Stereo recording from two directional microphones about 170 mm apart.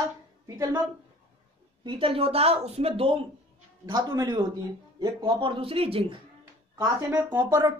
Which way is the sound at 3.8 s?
25° right (ahead or behind).